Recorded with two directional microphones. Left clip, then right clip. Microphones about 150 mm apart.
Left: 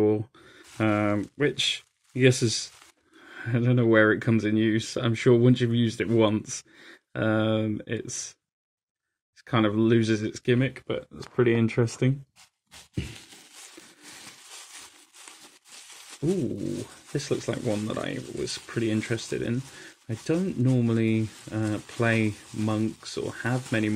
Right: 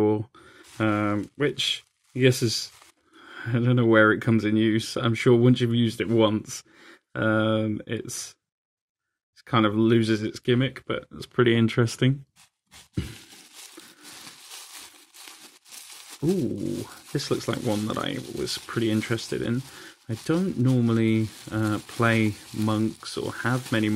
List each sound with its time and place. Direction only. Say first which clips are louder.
0.0 s speech: even; 15° right (ahead or behind)
9.5 s speech: right 2 dB; 15° right (ahead or behind)
11.1 s speech: right 2 dB; 35° right (ahead or behind)
14.1 s sawing: right 2 dB; 20° right (ahead or behind)
16.1 s speech: right 2 dB; 20° right (ahead or behind)